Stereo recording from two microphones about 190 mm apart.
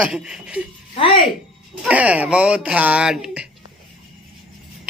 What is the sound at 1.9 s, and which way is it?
A man's voice, 5° right (ahead or behind).